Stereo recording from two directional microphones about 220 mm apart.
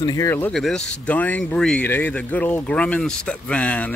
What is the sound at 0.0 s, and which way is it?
Speech, 15° left (ahead or behind).